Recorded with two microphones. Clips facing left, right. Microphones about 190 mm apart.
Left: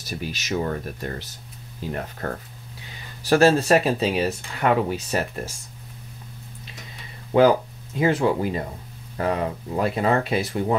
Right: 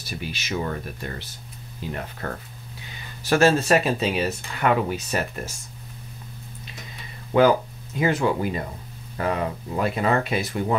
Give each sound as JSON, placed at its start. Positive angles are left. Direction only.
{"t": 0.0, "sound": "speech", "side_deg": 40}
{"t": 7.3, "sound": "speech", "side_deg": 30}